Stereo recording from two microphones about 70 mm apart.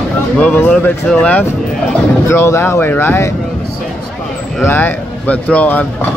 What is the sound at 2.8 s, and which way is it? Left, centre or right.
Speech, left.